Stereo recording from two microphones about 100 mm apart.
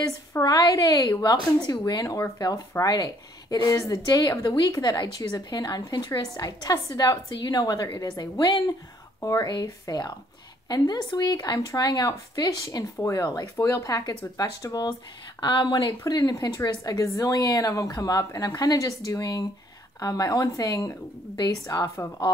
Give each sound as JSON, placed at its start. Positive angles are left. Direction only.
{"t": 0.0, "sound": "a woman's voice", "side_deg": 40}
{"t": 13.2, "sound": "a woman's voice", "side_deg": 40}
{"t": 16.0, "sound": "a woman's voice", "side_deg": 40}